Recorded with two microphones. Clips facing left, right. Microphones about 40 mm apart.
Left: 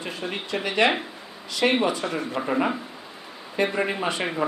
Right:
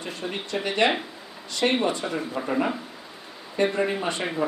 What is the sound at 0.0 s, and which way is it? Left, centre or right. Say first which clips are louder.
Speech: left 1 dB; centre.